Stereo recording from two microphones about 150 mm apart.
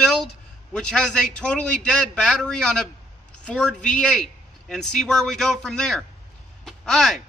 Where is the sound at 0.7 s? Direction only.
5° left (ahead or behind).